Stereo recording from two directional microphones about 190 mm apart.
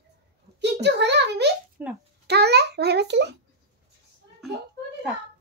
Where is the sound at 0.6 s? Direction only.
65° right (ahead or behind).